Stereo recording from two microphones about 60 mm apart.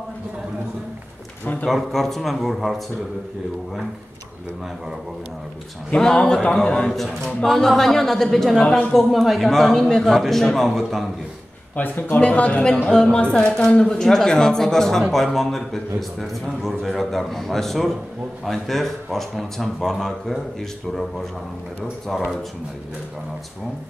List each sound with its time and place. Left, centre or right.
1.7 s speech: centre
5.9 s a man's voice: centre
11.7 s speech: left; by 22.3 s centre